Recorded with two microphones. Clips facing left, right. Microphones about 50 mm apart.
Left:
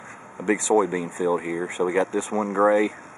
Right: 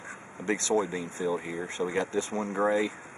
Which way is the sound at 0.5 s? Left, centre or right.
Centre.